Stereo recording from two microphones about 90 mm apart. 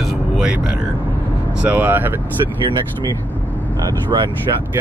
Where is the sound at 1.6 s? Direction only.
15° right (ahead or behind).